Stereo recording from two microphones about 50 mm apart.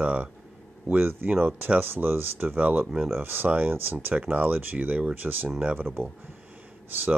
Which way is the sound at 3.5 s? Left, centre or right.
Right.